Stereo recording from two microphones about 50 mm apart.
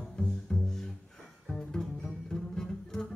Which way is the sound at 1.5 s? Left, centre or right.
Centre.